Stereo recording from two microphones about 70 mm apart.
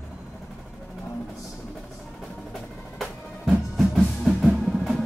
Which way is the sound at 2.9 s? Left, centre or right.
Centre.